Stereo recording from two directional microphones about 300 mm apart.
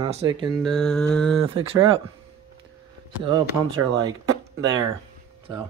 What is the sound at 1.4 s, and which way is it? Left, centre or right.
Speech, centre.